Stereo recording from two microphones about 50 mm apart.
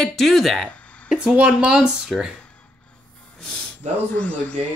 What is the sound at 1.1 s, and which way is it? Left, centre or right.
Speech, centre.